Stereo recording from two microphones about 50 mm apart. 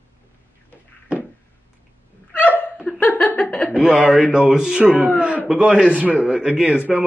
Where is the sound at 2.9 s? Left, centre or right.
Left.